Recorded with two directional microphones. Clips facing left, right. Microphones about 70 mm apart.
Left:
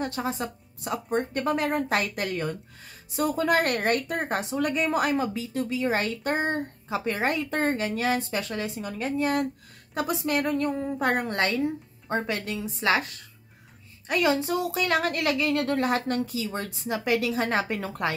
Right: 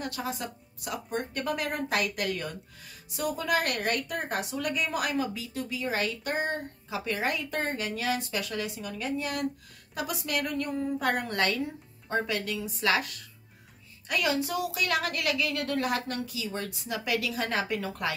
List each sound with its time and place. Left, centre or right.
0.0 s a woman's voice: left